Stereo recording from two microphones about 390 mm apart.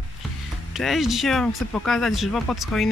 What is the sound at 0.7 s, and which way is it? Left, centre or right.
Speech, centre.